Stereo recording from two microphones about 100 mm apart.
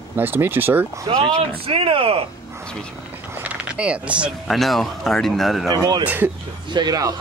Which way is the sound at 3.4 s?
10° right (ahead or behind).